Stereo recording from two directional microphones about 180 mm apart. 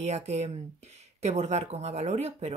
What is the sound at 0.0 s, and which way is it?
Speech, 40° right (ahead or behind).